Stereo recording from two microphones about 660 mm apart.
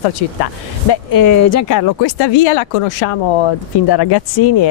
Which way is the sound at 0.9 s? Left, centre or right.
Left.